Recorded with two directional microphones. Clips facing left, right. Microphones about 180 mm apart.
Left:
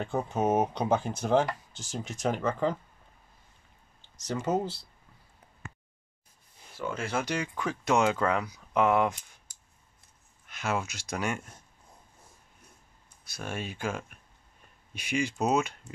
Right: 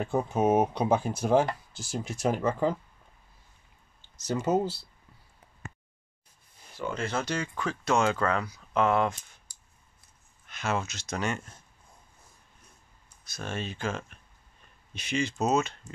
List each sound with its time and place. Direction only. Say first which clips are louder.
0.0 s speech: right 3 dB; 10° right (ahead or behind)
4.2 s speech: right 3 dB; 5° right (ahead or behind)
6.8 s speech: even; 5° left (ahead or behind)
10.4 s speech: right 1 dB; 10° left (ahead or behind)
13.2 s speech: right 1 dB; 10° left (ahead or behind)